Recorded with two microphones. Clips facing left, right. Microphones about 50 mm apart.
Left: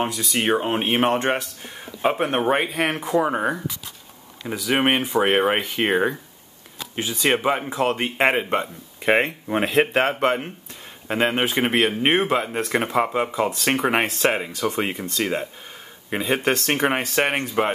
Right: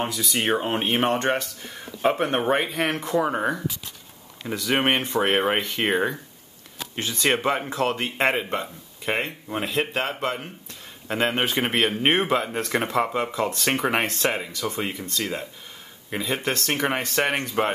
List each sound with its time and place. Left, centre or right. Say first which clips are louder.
0.0 s speech: left 2 dB; centre; by 10.4 s left
11.1 s speech: left 2 dB; centre
14.2 s speech: left 4 dB; centre
14.7 s speech: left 3 dB; left
16.8 s speech: left 2 dB; centre